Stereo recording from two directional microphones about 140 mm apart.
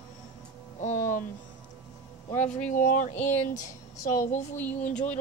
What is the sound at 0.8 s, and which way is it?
Music, 65° left (ahead or behind).